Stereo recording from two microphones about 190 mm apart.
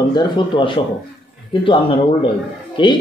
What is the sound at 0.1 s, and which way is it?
Speech, 25° left (ahead or behind).